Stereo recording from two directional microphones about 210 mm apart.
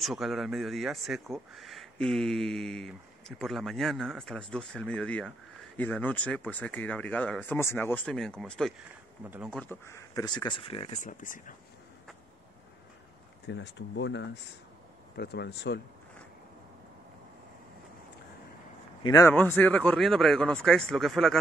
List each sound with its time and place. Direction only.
0.0 s speech: centre (ahead or behind)
9.2 s speech: 10° right (ahead or behind)
9.5 s speech: 10° left (ahead or behind); by 11.5 s 40° left (ahead or behind)
13.5 s speech: 55° left (ahead or behind)
19.0 s speech: 15° left (ahead or behind)